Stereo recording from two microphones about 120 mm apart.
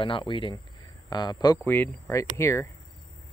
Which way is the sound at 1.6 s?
15° left (ahead or behind).